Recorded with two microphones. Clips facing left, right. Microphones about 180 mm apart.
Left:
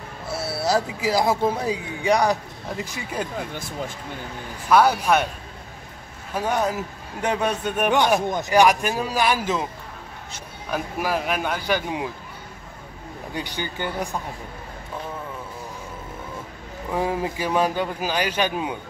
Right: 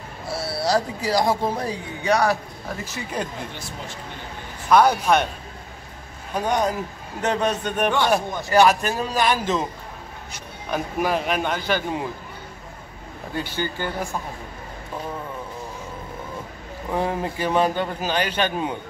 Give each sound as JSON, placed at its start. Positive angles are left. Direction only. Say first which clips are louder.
{"t": 0.7, "sound": "a man's voice", "louder": "even", "side_deg": 10}
{"t": 3.5, "sound": "speech", "louder": "left 5 dB", "side_deg": 50}
{"t": 4.6, "sound": "a man's voice", "louder": "right 1 dB", "side_deg": 5}
{"t": 6.3, "sound": "a man's voice", "louder": "right 1 dB", "side_deg": 5}
{"t": 10.7, "sound": "a man's voice", "louder": "right 2 dB", "side_deg": 5}
{"t": 13.3, "sound": "a man's voice", "louder": "right 3 dB", "side_deg": 15}
{"t": 16.9, "sound": "a man's voice", "louder": "even", "side_deg": 5}